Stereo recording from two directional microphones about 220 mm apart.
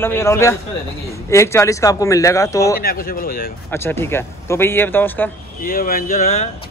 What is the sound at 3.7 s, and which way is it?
A man's voice, 10° left (ahead or behind).